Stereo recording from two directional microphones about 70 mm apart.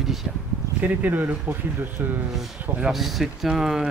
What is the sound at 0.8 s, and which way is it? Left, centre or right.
Speech, right.